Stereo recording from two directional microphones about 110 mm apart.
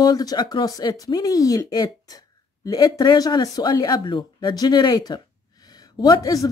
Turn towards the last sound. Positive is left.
turn(degrees=30)  # may be behind; listen again after turning